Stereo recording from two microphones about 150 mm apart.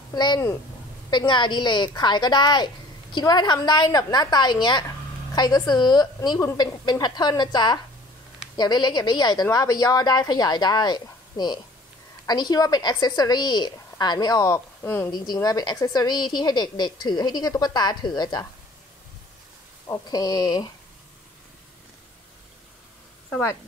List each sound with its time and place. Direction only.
0.1 s a woman's voice: 30° left (ahead or behind)
15.0 s a woman's voice: 30° left (ahead or behind)
19.9 s a woman's voice: 25° left (ahead or behind)
23.3 s speech: 20° left (ahead or behind)